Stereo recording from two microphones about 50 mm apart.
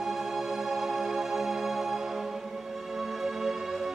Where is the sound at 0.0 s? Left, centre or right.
Centre.